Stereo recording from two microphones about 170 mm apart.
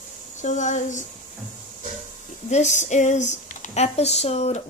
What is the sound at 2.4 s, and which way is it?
Speech, 40° left (ahead or behind).